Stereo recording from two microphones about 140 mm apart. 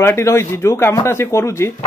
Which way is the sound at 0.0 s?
20° left (ahead or behind).